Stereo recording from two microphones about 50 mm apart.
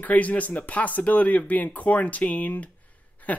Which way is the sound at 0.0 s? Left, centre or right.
Left.